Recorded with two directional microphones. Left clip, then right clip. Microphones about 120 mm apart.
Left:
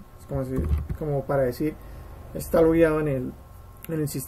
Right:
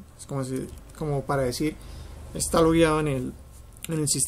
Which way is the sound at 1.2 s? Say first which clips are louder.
Left 3 dB; 20° right (ahead or behind).